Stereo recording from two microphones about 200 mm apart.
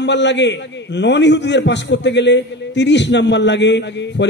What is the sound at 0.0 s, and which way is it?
A man's voice, 60° left (ahead or behind).